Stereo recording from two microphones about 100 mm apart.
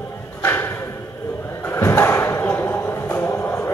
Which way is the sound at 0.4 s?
25° left (ahead or behind).